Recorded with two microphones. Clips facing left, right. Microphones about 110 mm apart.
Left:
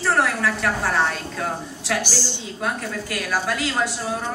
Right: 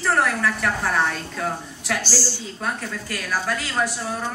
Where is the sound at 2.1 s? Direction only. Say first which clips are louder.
Right 1 dB; 15° left (ahead or behind).